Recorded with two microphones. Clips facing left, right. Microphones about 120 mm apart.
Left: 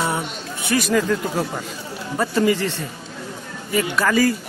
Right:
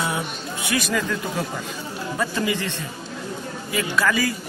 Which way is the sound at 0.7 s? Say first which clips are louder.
Left 6 dB; 40° left (ahead or behind).